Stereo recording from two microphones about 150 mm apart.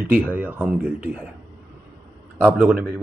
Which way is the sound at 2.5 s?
10° right (ahead or behind).